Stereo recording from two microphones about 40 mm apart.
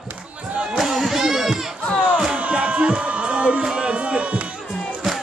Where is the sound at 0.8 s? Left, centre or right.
Centre.